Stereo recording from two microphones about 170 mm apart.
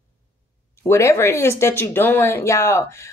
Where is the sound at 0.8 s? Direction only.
15° left (ahead or behind).